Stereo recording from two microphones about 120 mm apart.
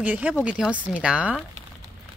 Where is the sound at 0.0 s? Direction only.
10° right (ahead or behind).